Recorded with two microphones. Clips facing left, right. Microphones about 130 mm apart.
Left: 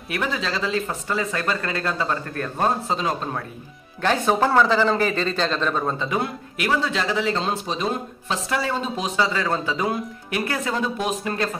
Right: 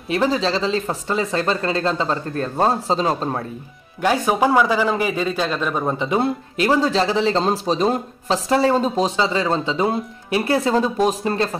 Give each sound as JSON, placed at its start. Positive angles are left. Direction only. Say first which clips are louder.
{"t": 0.1, "sound": "speech", "louder": "right 7 dB", "side_deg": -30}
{"t": 4.0, "sound": "speech", "louder": "right 2 dB", "side_deg": -10}